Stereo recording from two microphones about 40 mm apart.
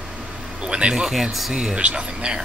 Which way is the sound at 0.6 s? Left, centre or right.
Right.